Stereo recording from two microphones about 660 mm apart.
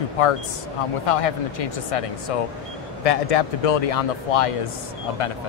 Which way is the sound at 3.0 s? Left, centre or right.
Left.